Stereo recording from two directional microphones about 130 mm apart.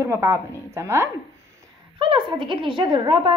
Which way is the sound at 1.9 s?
40° right (ahead or behind).